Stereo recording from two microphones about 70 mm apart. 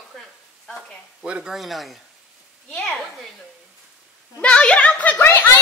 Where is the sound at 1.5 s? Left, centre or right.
Centre.